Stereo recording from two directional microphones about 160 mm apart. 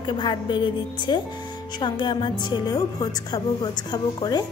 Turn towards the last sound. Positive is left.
turn(degrees=25)  # may be behind; listen again after turning